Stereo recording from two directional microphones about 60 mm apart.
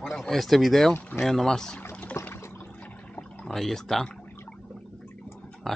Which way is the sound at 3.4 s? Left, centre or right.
Centre.